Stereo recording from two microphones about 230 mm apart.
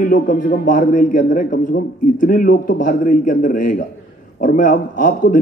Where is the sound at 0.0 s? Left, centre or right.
Left.